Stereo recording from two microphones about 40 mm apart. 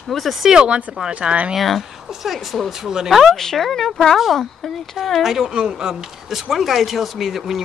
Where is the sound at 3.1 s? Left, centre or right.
Centre.